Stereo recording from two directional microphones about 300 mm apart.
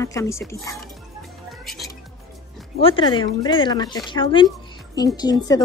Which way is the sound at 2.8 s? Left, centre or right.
Centre.